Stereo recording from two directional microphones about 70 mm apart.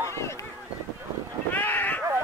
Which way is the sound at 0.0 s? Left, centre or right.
Left.